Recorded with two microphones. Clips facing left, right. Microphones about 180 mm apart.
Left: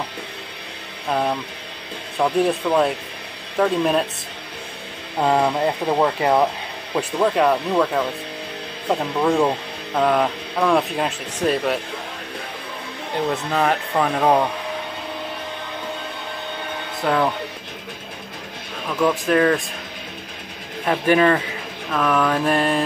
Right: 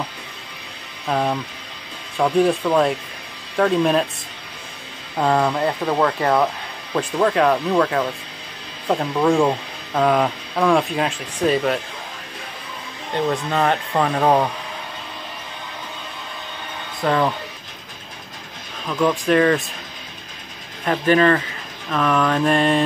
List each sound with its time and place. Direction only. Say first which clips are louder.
1.1 s speech: right 1 dB; centre (ahead or behind)
2.4 s speech: right 1 dB; centre (ahead or behind)
5.2 s speech: even; 10° left (ahead or behind)
13.3 s speech: even; centre (ahead or behind)
17.0 s speech: right 1 dB; centre (ahead or behind)
18.9 s speech: right 1 dB; centre (ahead or behind)
20.8 s speech: even; 5° left (ahead or behind)